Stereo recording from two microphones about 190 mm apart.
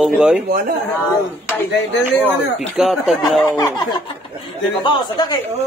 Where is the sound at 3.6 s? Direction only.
20° left (ahead or behind).